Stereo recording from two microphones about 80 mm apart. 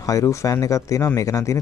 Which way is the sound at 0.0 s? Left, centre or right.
Left.